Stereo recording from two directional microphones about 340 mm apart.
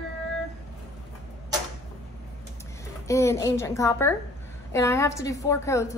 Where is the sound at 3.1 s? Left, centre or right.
Centre.